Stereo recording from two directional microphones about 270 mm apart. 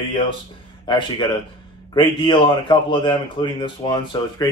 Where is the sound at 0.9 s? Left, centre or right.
Centre.